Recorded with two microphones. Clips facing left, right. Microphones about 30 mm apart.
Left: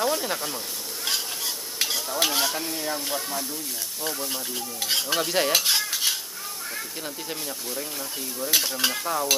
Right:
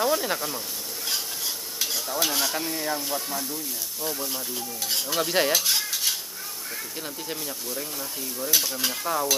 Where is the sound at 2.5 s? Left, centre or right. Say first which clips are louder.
Right 1 dB; centre.